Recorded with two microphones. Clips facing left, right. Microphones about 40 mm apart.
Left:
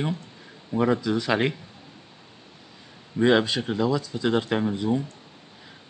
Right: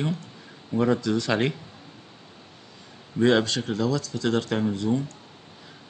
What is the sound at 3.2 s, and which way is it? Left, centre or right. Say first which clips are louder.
Speech: left 1 dB; centre.